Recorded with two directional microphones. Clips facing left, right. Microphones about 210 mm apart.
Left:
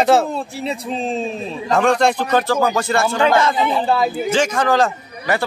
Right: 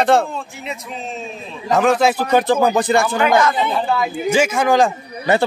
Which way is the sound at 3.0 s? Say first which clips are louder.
Left 1 dB; 30° left (ahead or behind).